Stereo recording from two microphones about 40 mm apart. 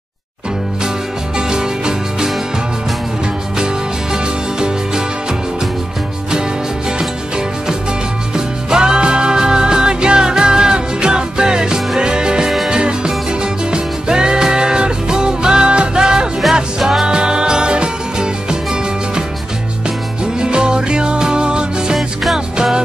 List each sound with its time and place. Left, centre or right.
1.5 s music: centre
3.5 s music: centre
7.0 s music: centre
20.3 s music: right
21.9 s music: centre
22.6 s music: centre